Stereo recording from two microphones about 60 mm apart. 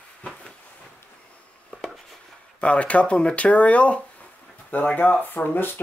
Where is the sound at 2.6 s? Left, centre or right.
Left.